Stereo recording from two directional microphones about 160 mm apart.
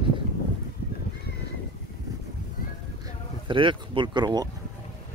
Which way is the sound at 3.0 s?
30° right (ahead or behind).